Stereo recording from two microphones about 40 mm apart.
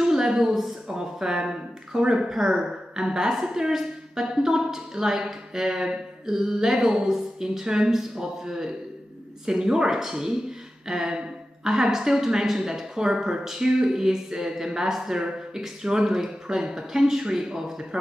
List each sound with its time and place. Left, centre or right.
0.0 s a woman's voice: centre